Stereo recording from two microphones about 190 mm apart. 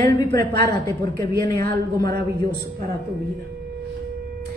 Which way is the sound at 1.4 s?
15° left (ahead or behind).